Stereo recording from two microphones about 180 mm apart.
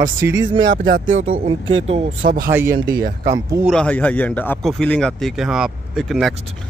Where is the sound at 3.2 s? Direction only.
20° right (ahead or behind).